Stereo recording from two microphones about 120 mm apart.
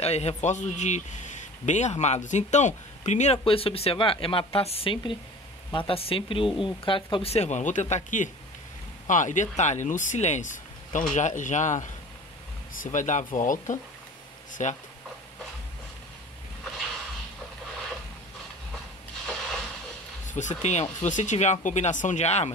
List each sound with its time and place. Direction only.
0.0 s a man's voice: 60° left (ahead or behind)
3.4 s a man's voice: 50° left (ahead or behind); by 11.9 s 90° left
12.9 s speech: 90° left
16.7 s a sound: centre (ahead or behind)
19.2 s a sound: 5° left (ahead or behind)
20.2 s a man's voice: 90° left; by 22.5 s 65° left (ahead or behind)